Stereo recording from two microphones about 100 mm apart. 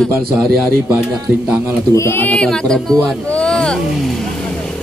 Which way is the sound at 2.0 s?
20° left (ahead or behind).